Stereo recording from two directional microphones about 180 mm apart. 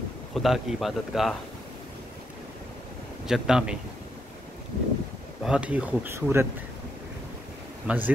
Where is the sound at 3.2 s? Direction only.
5° right (ahead or behind).